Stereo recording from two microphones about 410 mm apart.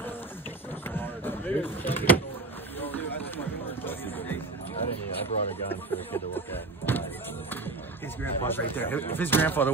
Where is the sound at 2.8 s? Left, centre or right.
Centre.